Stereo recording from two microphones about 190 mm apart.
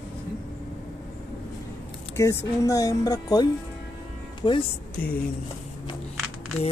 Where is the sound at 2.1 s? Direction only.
15° left (ahead or behind).